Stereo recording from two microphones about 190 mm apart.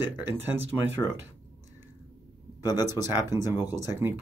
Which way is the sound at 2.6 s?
20° left (ahead or behind).